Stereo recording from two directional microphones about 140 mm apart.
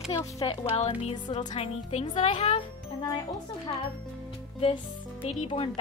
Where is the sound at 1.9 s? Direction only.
50° left (ahead or behind).